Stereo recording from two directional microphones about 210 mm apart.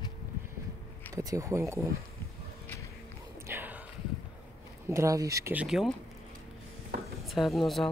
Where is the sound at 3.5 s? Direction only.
10° right (ahead or behind).